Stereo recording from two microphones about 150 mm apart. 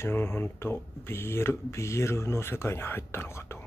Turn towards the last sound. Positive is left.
turn(degrees=15)  # may be behind; listen again after turning